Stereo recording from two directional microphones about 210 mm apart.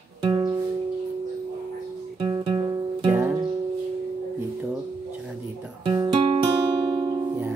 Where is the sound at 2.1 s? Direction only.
25° right (ahead or behind).